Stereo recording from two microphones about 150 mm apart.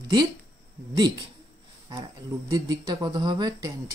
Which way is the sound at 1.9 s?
25° right (ahead or behind).